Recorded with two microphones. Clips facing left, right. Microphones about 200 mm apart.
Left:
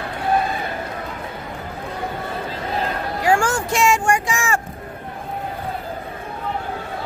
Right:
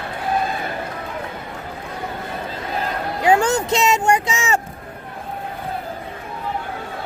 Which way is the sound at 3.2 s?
20° right (ahead or behind).